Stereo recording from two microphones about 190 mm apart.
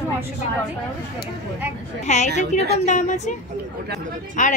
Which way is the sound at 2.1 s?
40° left (ahead or behind).